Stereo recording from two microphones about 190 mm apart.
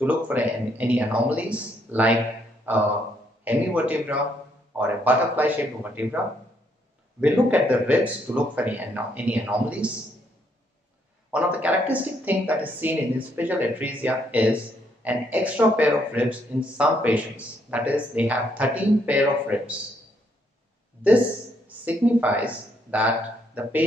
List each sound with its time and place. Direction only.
0.0 s speech: 10° right (ahead or behind)
7.2 s speech: 10° right (ahead or behind)
11.3 s speech: 10° right (ahead or behind)
21.8 s speech: 10° right (ahead or behind)